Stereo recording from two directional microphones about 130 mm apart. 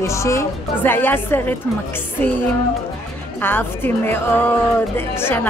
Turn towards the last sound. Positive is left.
turn(degrees=15)  # may be behind; listen again after turning